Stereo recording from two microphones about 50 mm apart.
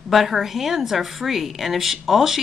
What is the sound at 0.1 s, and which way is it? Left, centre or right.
Speech, centre.